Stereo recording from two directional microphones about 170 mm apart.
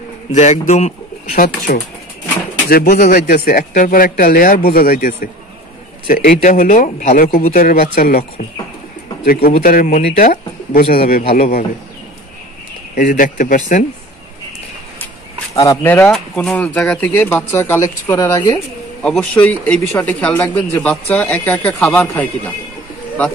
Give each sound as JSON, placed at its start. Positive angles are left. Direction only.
{"t": 0.3, "sound": "speech", "side_deg": 45}
{"t": 2.7, "sound": "a man's voice", "side_deg": 55}
{"t": 7.5, "sound": "a man's voice", "side_deg": 60}
{"t": 10.7, "sound": "a man's voice", "side_deg": 60}
{"t": 12.9, "sound": "a man's voice", "side_deg": 55}
{"t": 15.6, "sound": "a man's voice", "side_deg": 15}
{"t": 19.0, "sound": "a man's voice", "side_deg": 5}